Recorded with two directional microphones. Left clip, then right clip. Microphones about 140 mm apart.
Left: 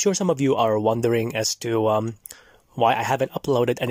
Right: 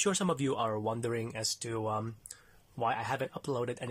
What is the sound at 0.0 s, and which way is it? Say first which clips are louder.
Speech: left 10 dB; 40° left (ahead or behind).